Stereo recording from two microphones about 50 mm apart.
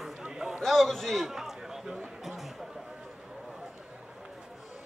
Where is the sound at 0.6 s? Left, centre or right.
Centre.